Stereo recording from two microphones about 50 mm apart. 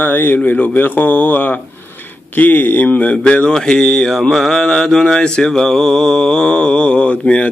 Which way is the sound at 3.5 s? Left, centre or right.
Centre.